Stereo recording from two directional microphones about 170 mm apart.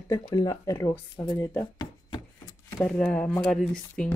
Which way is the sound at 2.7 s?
10° left (ahead or behind).